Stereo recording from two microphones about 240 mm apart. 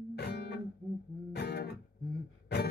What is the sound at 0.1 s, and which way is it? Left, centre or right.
Music, left.